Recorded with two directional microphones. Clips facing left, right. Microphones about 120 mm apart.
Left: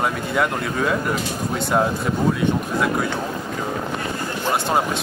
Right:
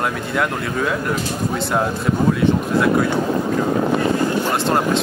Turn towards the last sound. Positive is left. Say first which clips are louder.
# right 2 dB
turn(degrees=5)  # may be behind; listen again after turning